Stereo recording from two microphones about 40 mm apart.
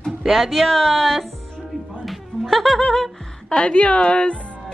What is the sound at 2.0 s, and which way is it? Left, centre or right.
Music, centre.